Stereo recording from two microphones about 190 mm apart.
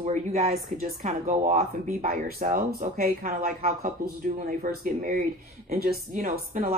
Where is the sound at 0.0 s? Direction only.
35° right (ahead or behind).